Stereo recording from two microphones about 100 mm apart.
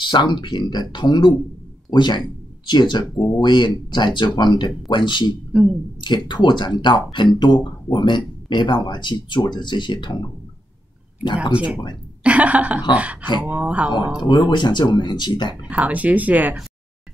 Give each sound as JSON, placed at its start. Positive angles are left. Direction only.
{"t": 0.0, "sound": "speech", "side_deg": 50}
{"t": 5.5, "sound": "speech", "side_deg": -10}
{"t": 5.9, "sound": "speech", "side_deg": 50}
{"t": 11.5, "sound": "speech", "side_deg": -15}
{"t": 14.2, "sound": "speech", "side_deg": 45}
{"t": 15.7, "sound": "speech", "side_deg": -15}